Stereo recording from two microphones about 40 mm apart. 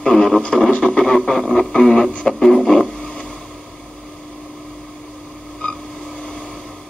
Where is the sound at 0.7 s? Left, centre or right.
Left.